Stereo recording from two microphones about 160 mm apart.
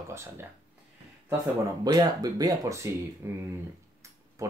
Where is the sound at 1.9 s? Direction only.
25° right (ahead or behind).